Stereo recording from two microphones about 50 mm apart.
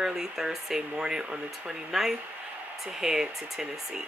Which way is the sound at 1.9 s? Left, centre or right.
Centre.